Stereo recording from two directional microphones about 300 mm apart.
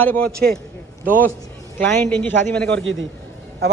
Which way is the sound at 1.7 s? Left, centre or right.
Centre.